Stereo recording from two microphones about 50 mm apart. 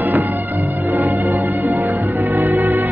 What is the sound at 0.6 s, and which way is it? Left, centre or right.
Music, right.